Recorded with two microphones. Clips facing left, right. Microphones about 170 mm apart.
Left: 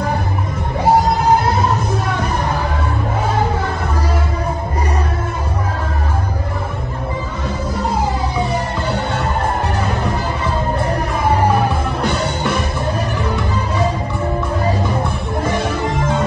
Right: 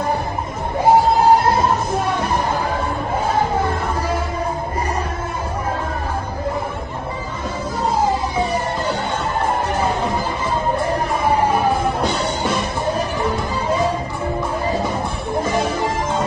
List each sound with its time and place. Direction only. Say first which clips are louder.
12.0 s music: left 1 dB; 60° left (ahead or behind)
15.4 s music: left 1 dB; 65° left (ahead or behind)